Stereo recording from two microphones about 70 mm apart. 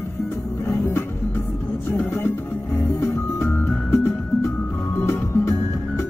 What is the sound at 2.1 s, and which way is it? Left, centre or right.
Music, left.